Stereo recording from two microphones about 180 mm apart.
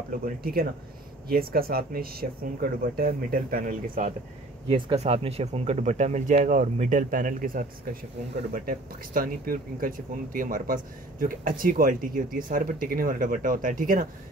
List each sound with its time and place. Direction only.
0.2 s speech: 55° right (ahead or behind)
4.6 s speech: 30° right (ahead or behind); by 14.0 s 50° right (ahead or behind)